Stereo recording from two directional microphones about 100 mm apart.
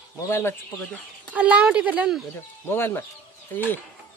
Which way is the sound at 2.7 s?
20° left (ahead or behind).